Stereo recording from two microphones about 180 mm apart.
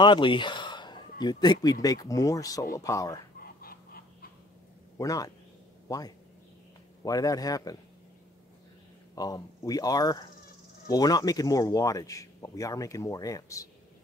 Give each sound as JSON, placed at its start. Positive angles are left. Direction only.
{"t": 0.0, "sound": "a sound", "side_deg": 25}
{"t": 1.2, "sound": "speech", "side_deg": 25}
{"t": 3.3, "sound": "goose", "side_deg": 55}
{"t": 4.9, "sound": "a man's voice", "side_deg": 20}
{"t": 9.1, "sound": "speech", "side_deg": 20}